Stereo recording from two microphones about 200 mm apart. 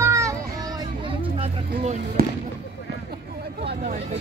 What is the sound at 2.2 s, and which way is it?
Fireworks, 50° right (ahead or behind).